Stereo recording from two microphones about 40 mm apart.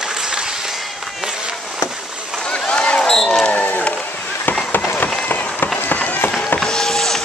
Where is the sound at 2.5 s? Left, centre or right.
Left.